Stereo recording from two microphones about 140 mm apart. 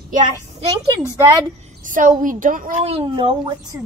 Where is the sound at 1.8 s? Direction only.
70° right (ahead or behind).